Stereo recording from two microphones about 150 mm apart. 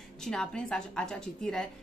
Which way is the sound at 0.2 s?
5° left (ahead or behind).